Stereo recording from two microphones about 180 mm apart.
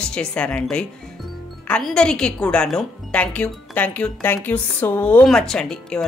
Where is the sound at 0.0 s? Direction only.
5° left (ahead or behind).